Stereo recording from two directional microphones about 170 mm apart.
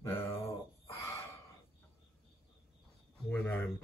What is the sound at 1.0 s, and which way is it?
Gasp, 15° left (ahead or behind).